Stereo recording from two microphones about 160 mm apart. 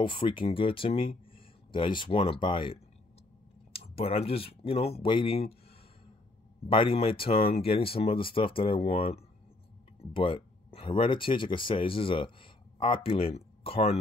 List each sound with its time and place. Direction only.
0.0 s speech: 30° left (ahead or behind)
6.7 s speech: 35° left (ahead or behind)